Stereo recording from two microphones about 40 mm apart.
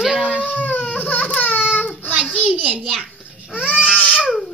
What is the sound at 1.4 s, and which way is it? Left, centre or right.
Baby cry, left.